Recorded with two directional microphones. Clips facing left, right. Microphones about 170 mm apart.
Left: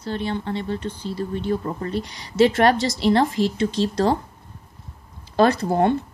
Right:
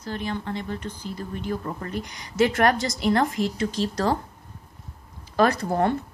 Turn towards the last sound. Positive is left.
turn(degrees=25)  # may be behind; listen again after turning